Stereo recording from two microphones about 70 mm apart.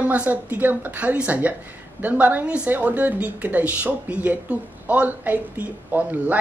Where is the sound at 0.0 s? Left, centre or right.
Right.